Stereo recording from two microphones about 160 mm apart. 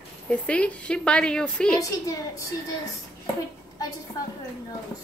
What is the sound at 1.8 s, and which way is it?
Speech, 20° left (ahead or behind).